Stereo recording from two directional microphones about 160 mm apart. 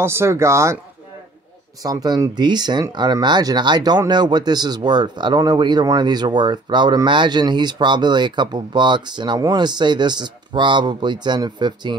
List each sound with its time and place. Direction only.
0.0 s speech: 15° right (ahead or behind)
1.8 s speech: 25° right (ahead or behind)